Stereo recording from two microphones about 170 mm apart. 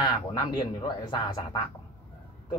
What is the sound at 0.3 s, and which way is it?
A man's voice, 25° left (ahead or behind).